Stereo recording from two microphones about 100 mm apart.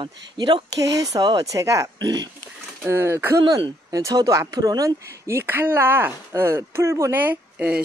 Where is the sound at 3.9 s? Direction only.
35° right (ahead or behind); by 7.8 s 10° right (ahead or behind).